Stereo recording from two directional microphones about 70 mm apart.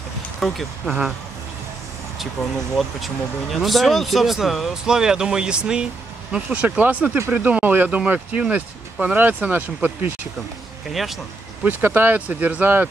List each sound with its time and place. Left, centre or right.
0.4 s speech: centre
2.8 s speech: centre; by 10.1 s right
10.9 s speech: centre
11.6 s speech: right